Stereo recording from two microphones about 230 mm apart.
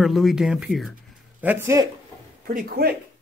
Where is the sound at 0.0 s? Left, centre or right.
Centre.